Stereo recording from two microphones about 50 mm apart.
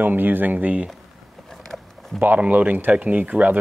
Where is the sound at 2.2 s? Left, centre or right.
Right.